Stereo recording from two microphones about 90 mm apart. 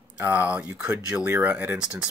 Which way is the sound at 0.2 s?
20° right (ahead or behind).